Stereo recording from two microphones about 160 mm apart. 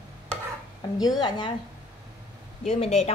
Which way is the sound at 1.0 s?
25° left (ahead or behind).